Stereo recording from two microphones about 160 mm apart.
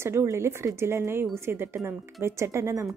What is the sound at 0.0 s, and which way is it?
Speech, 15° right (ahead or behind).